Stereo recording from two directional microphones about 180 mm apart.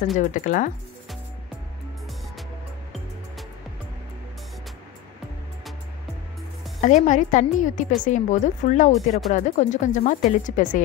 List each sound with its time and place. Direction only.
0.2 s a woman's voice: 45° left (ahead or behind)
6.8 s a woman's voice: 45° left (ahead or behind)